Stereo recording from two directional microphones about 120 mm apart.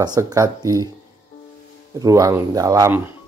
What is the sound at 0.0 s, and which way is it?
Speech, 30° right (ahead or behind).